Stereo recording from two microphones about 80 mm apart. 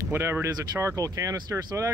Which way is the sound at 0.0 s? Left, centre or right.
Right.